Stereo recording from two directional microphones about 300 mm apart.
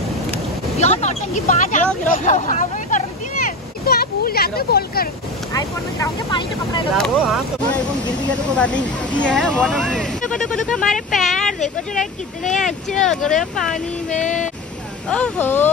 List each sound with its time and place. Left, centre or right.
0.7 s speech: left
5.5 s speech: centre
7.0 s speech: centre
14.1 s speech: left
15.0 s speech: centre